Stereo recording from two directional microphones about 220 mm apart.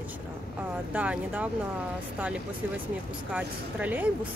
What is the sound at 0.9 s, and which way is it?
Speech, 5° right (ahead or behind).